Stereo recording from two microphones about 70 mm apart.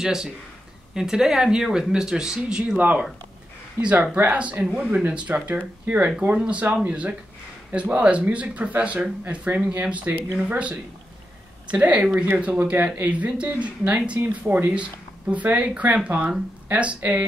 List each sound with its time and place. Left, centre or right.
0.0 s speech: centre